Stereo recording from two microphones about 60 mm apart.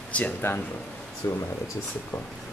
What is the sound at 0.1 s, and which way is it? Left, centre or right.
Speech, left.